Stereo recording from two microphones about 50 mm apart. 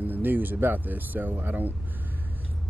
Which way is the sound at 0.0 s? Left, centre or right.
Right.